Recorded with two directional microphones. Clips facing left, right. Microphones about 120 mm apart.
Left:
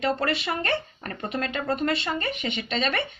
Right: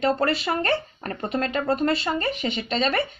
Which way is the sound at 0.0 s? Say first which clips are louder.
Right 3 dB; 35° right (ahead or behind).